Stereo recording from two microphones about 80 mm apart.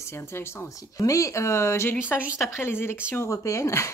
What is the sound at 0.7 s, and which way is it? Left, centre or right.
Speech, left.